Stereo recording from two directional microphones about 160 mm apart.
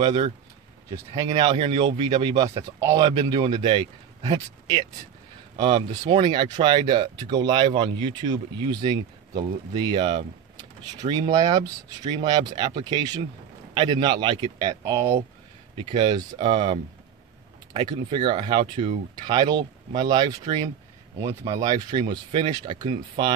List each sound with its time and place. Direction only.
0.0 s speech: 40° right (ahead or behind)
0.8 s a man's voice: 25° right (ahead or behind)
11.0 s speech: 50° right (ahead or behind)
11.3 s a man's voice: 20° right (ahead or behind)